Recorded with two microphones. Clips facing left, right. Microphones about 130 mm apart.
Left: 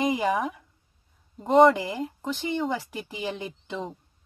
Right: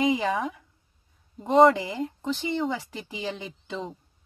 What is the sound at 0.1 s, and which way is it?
Speech, 20° left (ahead or behind).